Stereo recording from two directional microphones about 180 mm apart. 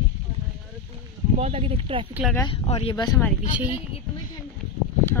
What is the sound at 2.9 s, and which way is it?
Speech, 20° left (ahead or behind).